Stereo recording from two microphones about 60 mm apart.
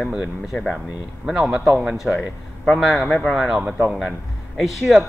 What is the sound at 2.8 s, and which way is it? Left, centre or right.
Speech, centre.